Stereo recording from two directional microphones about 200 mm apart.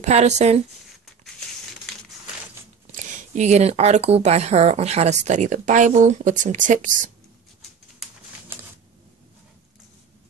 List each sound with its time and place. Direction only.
0.0 s speech: 35° right (ahead or behind)
2.9 s speech: 40° right (ahead or behind)